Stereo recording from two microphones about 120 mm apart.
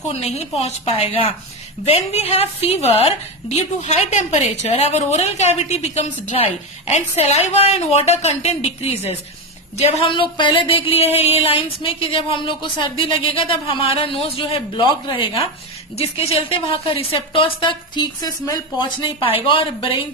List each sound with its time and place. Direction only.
0.1 s a woman's voice: 60° left (ahead or behind); by 15.5 s 45° left (ahead or behind)
16.0 s speech: 60° left (ahead or behind)